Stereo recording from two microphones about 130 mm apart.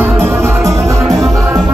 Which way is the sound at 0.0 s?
15° right (ahead or behind).